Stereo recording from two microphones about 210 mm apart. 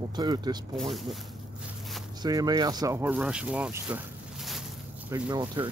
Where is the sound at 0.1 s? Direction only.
20° right (ahead or behind).